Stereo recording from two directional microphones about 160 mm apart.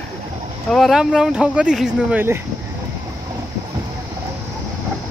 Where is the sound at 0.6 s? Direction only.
Centre (ahead or behind).